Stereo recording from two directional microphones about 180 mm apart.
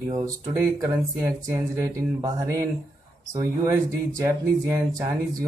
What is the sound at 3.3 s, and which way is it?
Speech, 20° right (ahead or behind).